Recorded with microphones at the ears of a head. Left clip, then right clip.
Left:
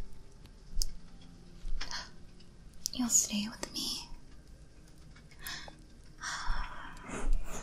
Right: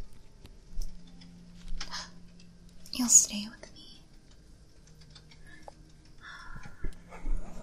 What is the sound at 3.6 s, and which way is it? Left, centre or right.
Whispering, left.